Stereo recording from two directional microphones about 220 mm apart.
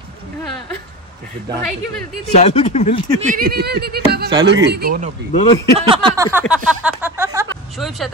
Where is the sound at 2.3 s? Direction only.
30° left (ahead or behind).